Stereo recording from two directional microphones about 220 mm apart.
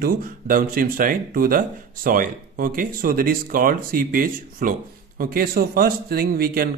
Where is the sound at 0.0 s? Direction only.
40° right (ahead or behind).